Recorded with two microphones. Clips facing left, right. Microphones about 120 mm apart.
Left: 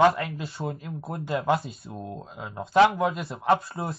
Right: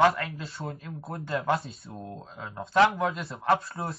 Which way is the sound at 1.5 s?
Centre (ahead or behind).